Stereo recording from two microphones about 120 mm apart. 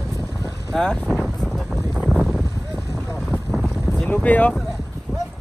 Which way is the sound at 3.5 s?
5° left (ahead or behind).